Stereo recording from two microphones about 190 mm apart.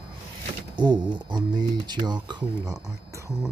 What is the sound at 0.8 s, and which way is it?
Speech, 25° right (ahead or behind).